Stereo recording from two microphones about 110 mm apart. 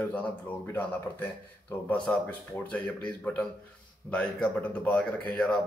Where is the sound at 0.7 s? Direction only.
15° left (ahead or behind).